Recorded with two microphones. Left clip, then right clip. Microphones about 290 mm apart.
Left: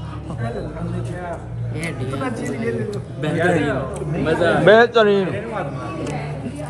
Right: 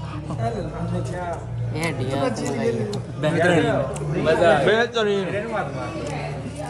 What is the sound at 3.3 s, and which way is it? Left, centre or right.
Speech, centre.